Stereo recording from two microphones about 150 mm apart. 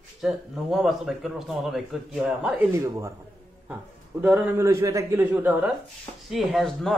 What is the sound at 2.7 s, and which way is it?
A man's voice, 20° right (ahead or behind).